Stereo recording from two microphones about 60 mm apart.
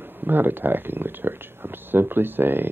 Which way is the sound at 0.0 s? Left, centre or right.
Right.